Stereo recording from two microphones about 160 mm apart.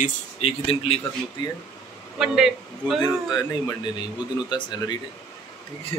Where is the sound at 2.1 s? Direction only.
5° right (ahead or behind).